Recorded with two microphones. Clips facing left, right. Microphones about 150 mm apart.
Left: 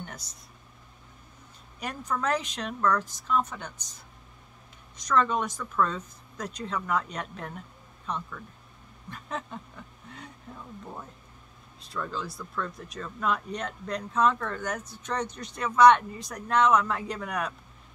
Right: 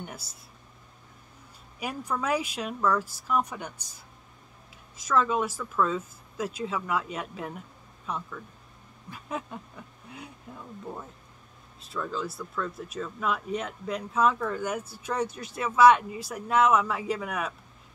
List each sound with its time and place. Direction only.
0.0 s a sound: 10° right (ahead or behind)
1.8 s speech: 10° right (ahead or behind)
11.8 s speech: centre (ahead or behind)